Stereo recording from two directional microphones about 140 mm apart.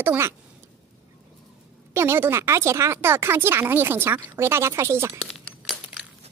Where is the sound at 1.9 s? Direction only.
20° right (ahead or behind).